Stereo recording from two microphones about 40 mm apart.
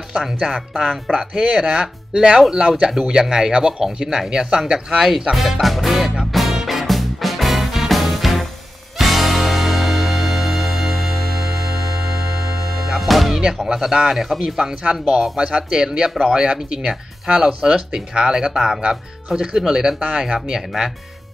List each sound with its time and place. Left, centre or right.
0.4 s speech: centre
5.3 s music: centre
12.7 s music: centre
13.8 s speech: centre
14.8 s speech: right